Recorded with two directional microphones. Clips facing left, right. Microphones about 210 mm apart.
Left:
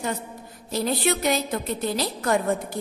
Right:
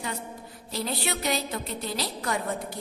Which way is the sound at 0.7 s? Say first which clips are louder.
Left 7 dB; 50° left (ahead or behind).